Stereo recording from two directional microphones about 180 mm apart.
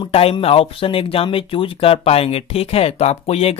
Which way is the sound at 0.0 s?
30° left (ahead or behind).